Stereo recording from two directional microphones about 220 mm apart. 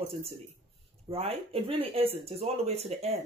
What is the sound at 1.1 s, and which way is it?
A man's voice, 25° right (ahead or behind).